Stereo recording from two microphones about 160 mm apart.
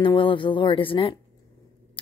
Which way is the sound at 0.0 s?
30° left (ahead or behind).